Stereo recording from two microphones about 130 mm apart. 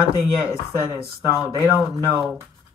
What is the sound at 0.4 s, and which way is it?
Speech, 20° left (ahead or behind).